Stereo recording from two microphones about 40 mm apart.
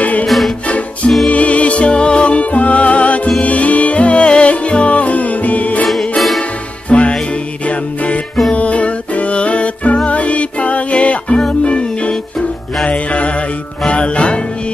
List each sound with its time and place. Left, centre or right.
0.0 s music: left
5.9 s music: centre
6.9 s music: left